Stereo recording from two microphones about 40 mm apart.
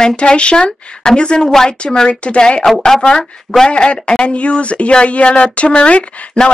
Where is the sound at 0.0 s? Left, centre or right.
Left.